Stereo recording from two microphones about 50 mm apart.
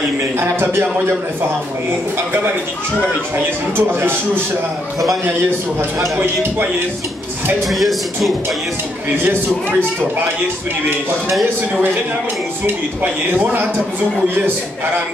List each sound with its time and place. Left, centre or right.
0.4 s a man's voice: right
3.7 s a man's voice: right
7.6 s speech: centre
9.2 s a man's voice: right
11.4 s a man's voice: right